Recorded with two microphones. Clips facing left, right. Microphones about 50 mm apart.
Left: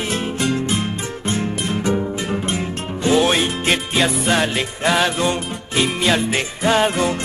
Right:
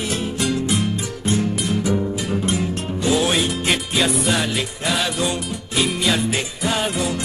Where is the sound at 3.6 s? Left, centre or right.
Centre.